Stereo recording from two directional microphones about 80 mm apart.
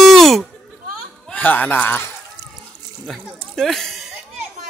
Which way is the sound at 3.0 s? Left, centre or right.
Centre.